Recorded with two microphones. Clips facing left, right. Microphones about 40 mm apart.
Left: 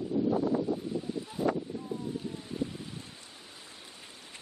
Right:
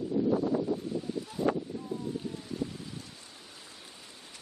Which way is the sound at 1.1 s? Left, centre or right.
Centre.